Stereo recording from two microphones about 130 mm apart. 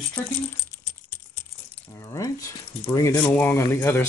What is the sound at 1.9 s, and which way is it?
Speech, 25° left (ahead or behind).